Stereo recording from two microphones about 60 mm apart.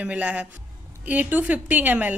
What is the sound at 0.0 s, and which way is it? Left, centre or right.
A woman's voice, right.